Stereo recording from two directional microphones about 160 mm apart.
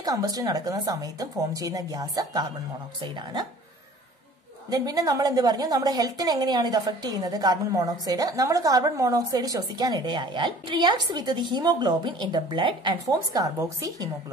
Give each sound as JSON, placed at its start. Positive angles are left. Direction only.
{"t": 0.0, "sound": "a woman's voice", "side_deg": -25}
{"t": 4.6, "sound": "a woman's voice", "side_deg": -20}